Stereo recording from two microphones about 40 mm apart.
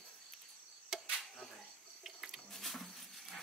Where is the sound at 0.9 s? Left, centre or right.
Centre.